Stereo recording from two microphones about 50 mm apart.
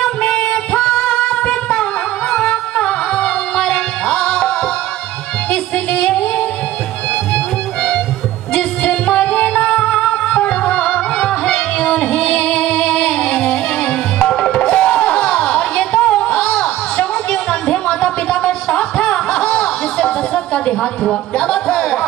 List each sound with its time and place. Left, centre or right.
0.0 s music: left
5.5 s music: left